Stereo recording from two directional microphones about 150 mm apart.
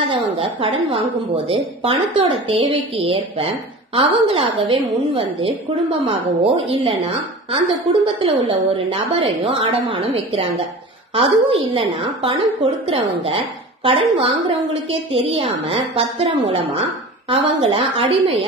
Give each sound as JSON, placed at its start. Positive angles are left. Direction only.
{"t": 0.1, "sound": "a woman's voice", "side_deg": -35}
{"t": 17.3, "sound": "a woman's voice", "side_deg": -35}